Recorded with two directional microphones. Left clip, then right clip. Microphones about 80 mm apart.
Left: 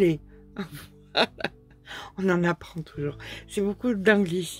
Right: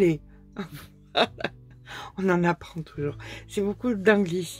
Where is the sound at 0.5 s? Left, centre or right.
Left.